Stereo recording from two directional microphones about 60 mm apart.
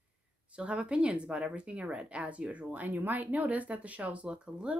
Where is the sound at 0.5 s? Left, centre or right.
Centre.